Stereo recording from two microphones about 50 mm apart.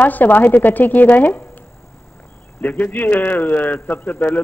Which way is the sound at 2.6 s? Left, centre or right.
Left.